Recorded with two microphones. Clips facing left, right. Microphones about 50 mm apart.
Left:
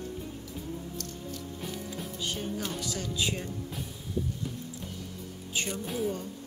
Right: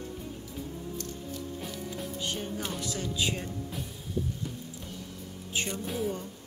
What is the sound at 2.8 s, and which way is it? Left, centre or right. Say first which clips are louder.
Music: right 2 dB; right.